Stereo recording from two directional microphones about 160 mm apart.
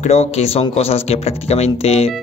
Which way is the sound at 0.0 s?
40° left (ahead or behind).